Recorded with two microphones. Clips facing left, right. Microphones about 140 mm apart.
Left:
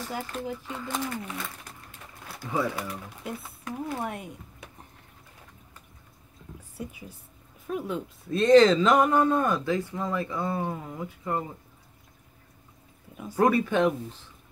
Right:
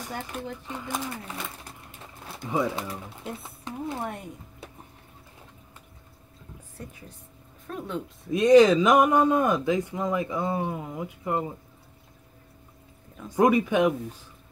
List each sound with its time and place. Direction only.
0.3 s speech: 10° right (ahead or behind)
1.9 s pigeon: 20° right (ahead or behind)
3.3 s speech: 25° right (ahead or behind)
4.0 s speech: centre (ahead or behind)
6.8 s a woman's voice: 10° left (ahead or behind)
8.3 s speech: 15° right (ahead or behind)
13.4 s speech: 15° right (ahead or behind)